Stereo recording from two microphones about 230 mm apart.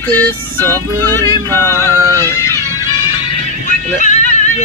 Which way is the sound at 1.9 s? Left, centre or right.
Centre.